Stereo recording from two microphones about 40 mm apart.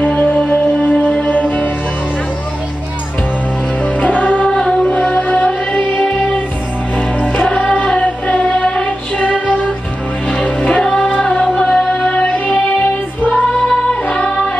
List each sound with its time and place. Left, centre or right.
0.0 s music: left
3.8 s music: left
4.5 s music: centre
4.8 s music: left
5.9 s music: left
11.6 s music: left
12.1 s music: left